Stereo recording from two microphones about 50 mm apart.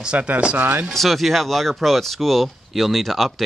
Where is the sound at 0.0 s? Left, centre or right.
Right.